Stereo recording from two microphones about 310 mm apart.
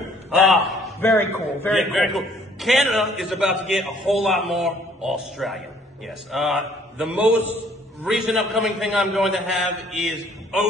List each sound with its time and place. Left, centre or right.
0.4 s a man's voice: centre